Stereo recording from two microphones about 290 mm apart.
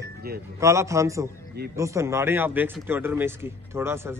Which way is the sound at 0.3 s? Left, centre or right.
Right.